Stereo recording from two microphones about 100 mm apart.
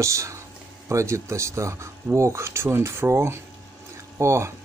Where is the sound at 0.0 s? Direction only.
30° right (ahead or behind).